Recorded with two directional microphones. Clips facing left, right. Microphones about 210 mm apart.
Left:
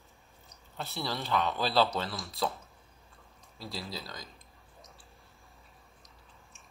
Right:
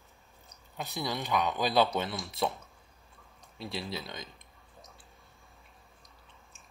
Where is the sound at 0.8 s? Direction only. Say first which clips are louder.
Right 1 dB; 15° right (ahead or behind).